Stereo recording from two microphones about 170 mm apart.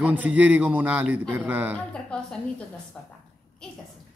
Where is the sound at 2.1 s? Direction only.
5° left (ahead or behind).